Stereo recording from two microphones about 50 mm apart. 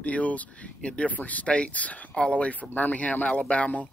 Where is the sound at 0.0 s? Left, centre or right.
Left.